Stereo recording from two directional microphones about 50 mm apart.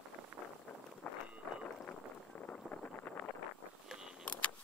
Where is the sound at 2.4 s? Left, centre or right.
Left.